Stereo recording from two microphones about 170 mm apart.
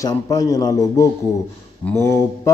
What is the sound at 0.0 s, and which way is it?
Speech, 20° left (ahead or behind).